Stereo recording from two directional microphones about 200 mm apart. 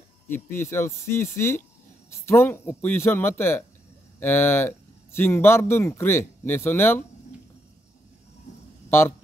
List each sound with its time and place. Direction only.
0.3 s speech: 10° left (ahead or behind)